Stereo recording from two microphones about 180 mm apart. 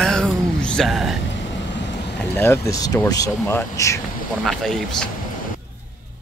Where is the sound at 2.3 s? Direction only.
15° left (ahead or behind).